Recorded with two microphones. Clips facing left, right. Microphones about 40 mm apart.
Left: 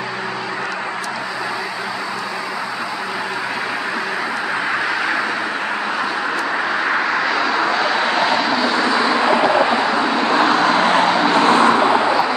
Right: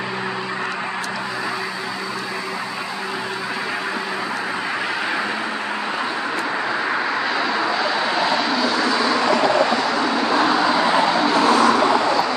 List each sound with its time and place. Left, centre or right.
8.3 s vehicle: centre
10.2 s vehicle: left
11.1 s vehicle: left